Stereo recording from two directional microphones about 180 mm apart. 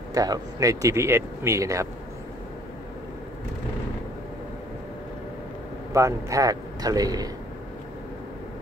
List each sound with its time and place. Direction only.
0.1 s speech: 20° right (ahead or behind)
5.9 s a man's voice: 15° right (ahead or behind)